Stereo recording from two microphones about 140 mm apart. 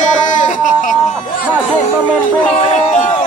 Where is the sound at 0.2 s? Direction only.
65° left (ahead or behind).